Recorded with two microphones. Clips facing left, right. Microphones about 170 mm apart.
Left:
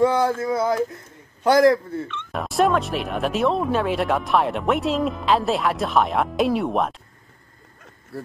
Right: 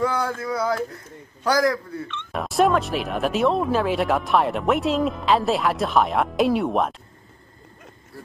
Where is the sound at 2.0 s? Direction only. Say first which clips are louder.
Even; centre (ahead or behind).